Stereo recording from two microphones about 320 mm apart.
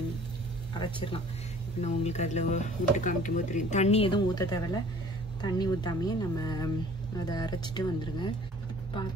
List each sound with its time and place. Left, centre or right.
0.7 s speech: centre